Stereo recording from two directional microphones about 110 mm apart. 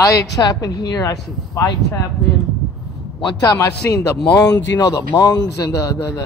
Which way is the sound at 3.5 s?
30° left (ahead or behind).